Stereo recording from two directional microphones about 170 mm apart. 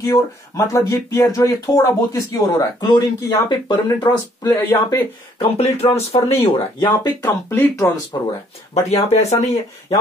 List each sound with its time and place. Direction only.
0.0 s speech: 20° left (ahead or behind)
5.4 s speech: 35° left (ahead or behind)
7.2 s speech: 10° left (ahead or behind)
8.7 s speech: 40° left (ahead or behind)